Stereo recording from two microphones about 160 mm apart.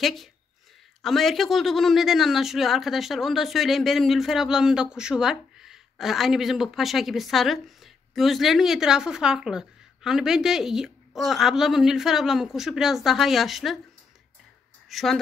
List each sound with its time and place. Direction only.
0.0 s speech: centre (ahead or behind)
14.9 s speech: centre (ahead or behind)